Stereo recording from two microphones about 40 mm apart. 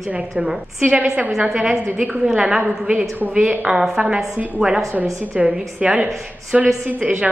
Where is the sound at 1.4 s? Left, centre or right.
Centre.